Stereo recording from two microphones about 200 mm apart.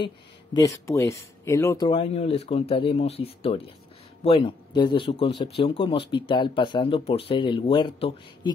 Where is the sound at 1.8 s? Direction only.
30° left (ahead or behind).